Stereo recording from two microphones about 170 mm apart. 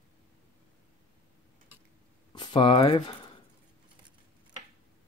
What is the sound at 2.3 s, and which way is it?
Speech, 25° left (ahead or behind).